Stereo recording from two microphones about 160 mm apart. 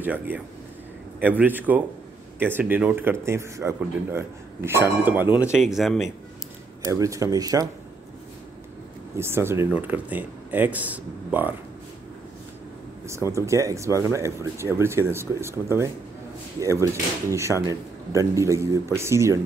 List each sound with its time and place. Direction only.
0.0 s speech: 10° right (ahead or behind)
6.9 s speech: 20° right (ahead or behind)
9.1 s speech: 15° right (ahead or behind)
13.0 s speech: 15° right (ahead or behind)